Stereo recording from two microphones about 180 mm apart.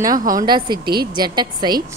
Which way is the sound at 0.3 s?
20° right (ahead or behind).